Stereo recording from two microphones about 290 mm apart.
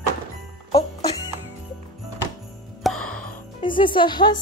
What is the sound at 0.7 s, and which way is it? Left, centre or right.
Music, centre.